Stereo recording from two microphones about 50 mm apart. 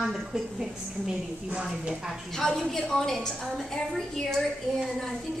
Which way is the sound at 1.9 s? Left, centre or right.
Centre.